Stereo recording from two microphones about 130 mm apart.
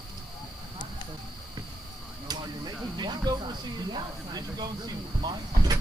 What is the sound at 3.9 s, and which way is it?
Speech, 30° right (ahead or behind).